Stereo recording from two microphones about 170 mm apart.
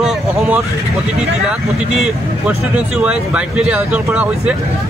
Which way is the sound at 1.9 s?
5° right (ahead or behind).